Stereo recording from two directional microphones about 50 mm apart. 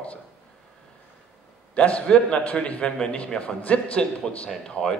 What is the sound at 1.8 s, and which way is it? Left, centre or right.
A man's voice, left.